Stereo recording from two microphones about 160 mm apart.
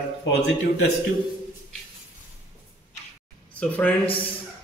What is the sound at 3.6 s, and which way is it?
Speech, 10° left (ahead or behind).